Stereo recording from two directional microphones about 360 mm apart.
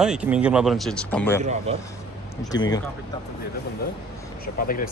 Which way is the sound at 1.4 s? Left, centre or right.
Centre.